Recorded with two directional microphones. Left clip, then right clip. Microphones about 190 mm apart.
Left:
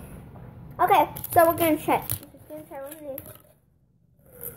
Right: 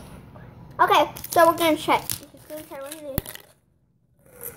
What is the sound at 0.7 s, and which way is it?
A woman's voice, 10° right (ahead or behind).